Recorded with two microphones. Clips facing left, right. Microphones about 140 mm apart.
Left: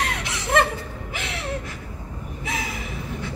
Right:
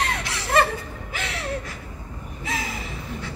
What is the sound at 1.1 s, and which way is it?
Gasp, 20° left (ahead or behind).